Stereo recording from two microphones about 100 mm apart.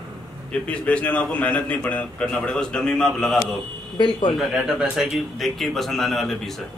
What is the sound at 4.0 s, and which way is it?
Speech, 55° left (ahead or behind).